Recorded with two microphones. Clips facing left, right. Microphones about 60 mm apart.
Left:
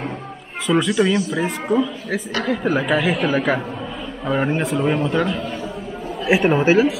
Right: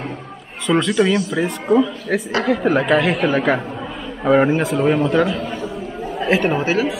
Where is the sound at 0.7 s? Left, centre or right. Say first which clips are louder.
Right 1 dB; centre.